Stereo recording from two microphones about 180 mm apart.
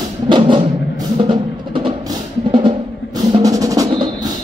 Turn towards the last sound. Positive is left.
turn(degrees=-20)  # may be behind; listen again after turning